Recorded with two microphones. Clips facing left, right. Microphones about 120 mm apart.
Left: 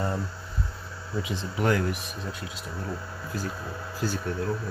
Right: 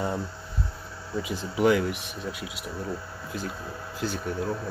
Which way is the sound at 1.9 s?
70° right (ahead or behind).